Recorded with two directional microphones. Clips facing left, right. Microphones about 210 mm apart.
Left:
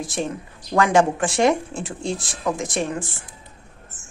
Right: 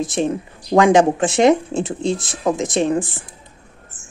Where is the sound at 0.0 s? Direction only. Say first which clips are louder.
Right 7 dB; 20° right (ahead or behind).